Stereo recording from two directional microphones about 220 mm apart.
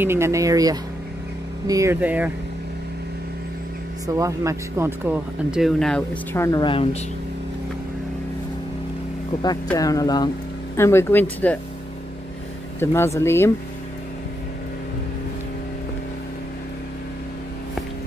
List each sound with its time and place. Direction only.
0.0 s speech: 10° right (ahead or behind)
4.1 s speech: 15° right (ahead or behind); by 7.0 s 25° left (ahead or behind)
9.7 s speech: 15° left (ahead or behind)
12.8 s speech: 10° left (ahead or behind)